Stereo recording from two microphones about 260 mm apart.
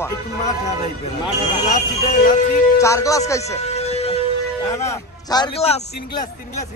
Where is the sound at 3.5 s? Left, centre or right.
Left.